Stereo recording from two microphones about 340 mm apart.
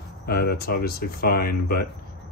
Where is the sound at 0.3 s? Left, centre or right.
Left.